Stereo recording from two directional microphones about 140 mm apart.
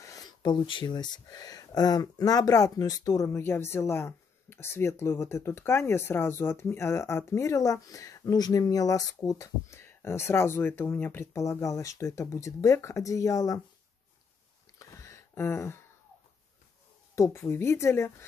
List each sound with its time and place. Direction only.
0.0 s speech: 25° left (ahead or behind)
14.8 s a sound: 20° left (ahead or behind)
17.1 s speech: 20° left (ahead or behind)